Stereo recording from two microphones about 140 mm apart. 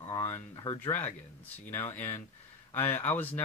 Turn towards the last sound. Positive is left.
turn(degrees=15)  # may be behind; listen again after turning